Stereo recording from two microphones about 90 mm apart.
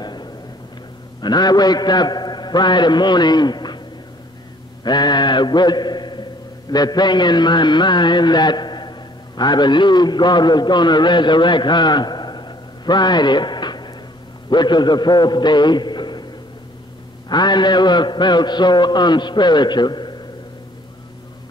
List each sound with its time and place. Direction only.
0.0 s a sound: 50° left (ahead or behind)
1.2 s a man's voice: 50° left (ahead or behind)
4.8 s a man's voice: 55° left (ahead or behind)
17.3 s a man's voice: 55° left (ahead or behind)